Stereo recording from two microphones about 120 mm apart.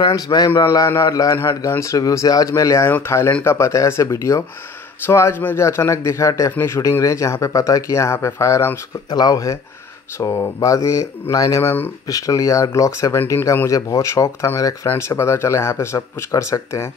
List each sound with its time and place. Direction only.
0.0 s speech: 35° left (ahead or behind)
11.6 s speech: 15° left (ahead or behind)
12.1 s speech: 30° left (ahead or behind)